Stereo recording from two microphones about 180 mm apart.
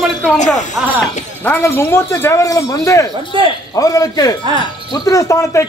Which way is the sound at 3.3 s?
25° right (ahead or behind).